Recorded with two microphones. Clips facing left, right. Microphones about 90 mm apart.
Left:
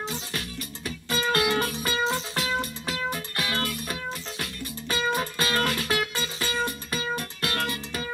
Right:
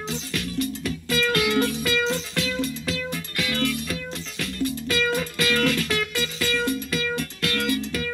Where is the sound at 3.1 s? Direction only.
45° left (ahead or behind).